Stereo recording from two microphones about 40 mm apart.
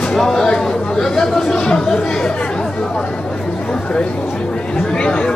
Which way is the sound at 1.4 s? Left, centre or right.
Centre.